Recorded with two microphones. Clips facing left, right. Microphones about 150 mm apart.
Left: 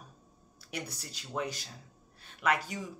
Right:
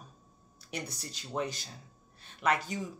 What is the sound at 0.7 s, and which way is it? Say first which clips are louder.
Speech: right 1 dB; 10° left (ahead or behind).